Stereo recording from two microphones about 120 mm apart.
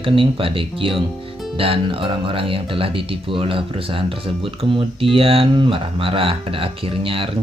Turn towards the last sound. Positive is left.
turn(degrees=-50)  # may be behind; listen again after turning